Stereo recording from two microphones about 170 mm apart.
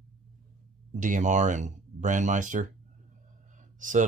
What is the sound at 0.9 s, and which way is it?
Speech, 50° right (ahead or behind).